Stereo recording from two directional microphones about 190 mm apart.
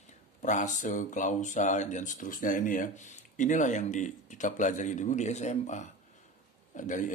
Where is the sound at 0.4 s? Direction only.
40° left (ahead or behind).